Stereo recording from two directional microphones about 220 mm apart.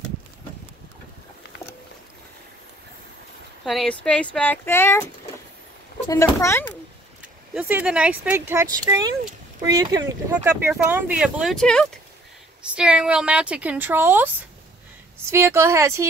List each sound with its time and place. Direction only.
3.6 s speech: centre (ahead or behind)
6.0 s speech: 15° left (ahead or behind)
7.5 s speech: 5° right (ahead or behind)